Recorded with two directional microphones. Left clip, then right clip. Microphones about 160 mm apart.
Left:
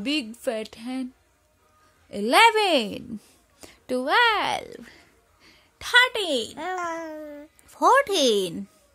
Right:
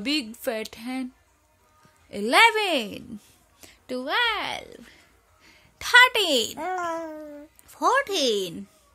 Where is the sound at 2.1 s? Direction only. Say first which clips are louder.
Left 1 dB; 15° left (ahead or behind).